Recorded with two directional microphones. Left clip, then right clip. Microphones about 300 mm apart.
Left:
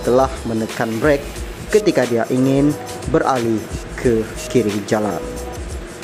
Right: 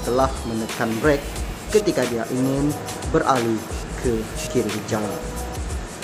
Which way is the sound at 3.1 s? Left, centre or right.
Centre.